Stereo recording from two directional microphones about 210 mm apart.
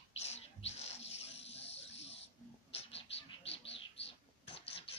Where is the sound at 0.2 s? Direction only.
30° left (ahead or behind).